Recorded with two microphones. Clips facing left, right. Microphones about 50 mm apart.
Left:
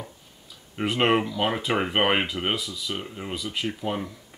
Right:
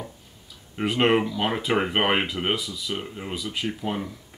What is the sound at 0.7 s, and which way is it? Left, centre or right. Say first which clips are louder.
Speech: right 1 dB; centre.